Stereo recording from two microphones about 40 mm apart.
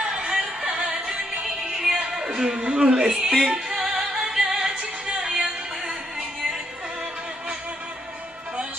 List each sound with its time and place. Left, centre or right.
0.0 s music: centre
2.0 s speech: centre
3.6 s music: centre
5.0 s music: right